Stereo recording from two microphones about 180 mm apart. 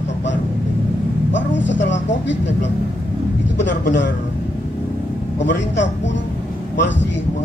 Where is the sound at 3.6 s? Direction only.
80° left.